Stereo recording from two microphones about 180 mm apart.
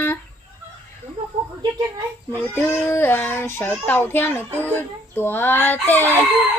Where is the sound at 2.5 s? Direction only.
10° left (ahead or behind).